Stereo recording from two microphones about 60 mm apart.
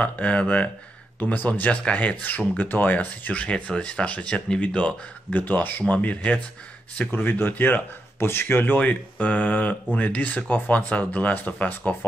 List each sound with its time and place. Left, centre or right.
0.0 s speech: left
1.2 s speech: left
7.1 s speech: left